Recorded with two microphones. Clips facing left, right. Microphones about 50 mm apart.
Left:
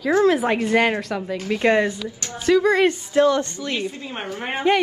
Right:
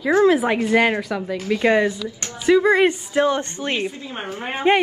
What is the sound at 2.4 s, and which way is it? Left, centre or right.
A woman's voice, centre.